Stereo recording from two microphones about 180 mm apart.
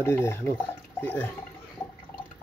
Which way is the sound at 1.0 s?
10° left (ahead or behind).